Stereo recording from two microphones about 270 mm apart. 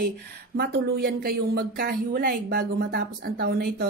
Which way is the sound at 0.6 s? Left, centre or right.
Right.